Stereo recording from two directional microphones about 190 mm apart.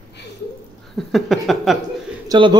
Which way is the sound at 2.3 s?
25° right (ahead or behind).